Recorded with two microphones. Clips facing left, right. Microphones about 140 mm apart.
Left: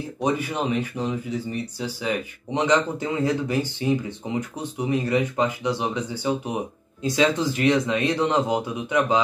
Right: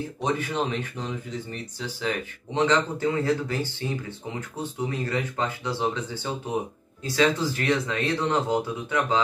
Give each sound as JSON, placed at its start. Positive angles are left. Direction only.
{"t": 0.2, "sound": "speech", "side_deg": 10}